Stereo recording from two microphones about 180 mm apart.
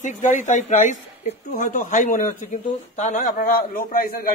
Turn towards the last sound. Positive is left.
turn(degrees=50)  # may be behind; listen again after turning